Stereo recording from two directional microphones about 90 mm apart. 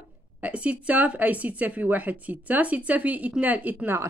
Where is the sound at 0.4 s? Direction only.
15° right (ahead or behind).